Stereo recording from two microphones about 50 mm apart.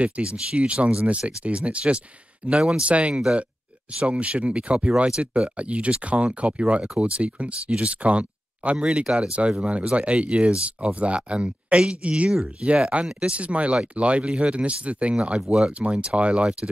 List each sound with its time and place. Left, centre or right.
0.0 s speech: right
2.9 s speech: right
9.5 s speech: right